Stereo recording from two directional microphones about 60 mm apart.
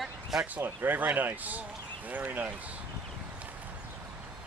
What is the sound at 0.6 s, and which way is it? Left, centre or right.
Speech, right.